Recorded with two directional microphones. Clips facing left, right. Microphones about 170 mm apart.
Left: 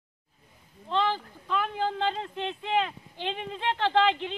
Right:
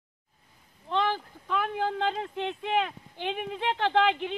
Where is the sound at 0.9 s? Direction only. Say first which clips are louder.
Even; 15° right (ahead or behind).